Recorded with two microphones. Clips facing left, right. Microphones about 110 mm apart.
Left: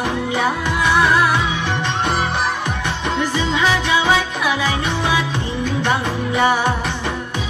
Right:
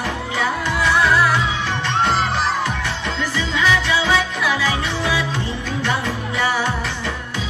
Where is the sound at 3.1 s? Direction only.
20° left (ahead or behind).